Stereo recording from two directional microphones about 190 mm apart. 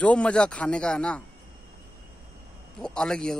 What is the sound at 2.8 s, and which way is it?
Speech, 5° left (ahead or behind).